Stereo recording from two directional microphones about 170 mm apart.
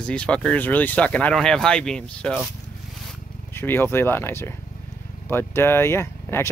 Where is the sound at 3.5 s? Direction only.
15° left (ahead or behind).